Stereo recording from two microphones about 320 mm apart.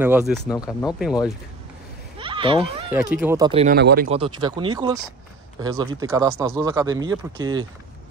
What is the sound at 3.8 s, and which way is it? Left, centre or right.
Speech, right.